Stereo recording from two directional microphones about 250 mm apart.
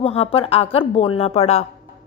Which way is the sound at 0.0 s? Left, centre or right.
Left.